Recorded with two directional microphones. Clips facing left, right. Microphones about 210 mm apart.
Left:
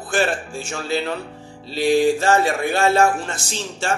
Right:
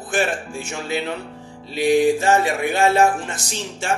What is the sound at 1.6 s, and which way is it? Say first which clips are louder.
Speech: even; 15° right (ahead or behind).